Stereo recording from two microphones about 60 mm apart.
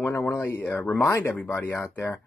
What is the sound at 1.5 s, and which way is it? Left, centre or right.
Speech, left.